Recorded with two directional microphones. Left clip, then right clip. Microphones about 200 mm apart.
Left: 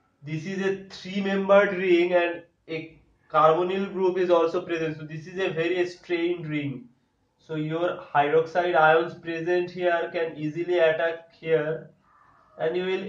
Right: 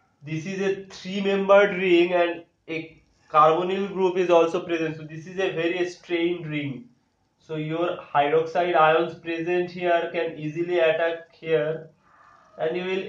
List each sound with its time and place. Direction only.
1.2 s a man's voice: 10° right (ahead or behind)